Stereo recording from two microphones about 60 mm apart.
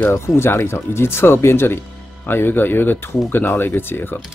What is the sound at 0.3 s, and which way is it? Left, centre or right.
Speech, left.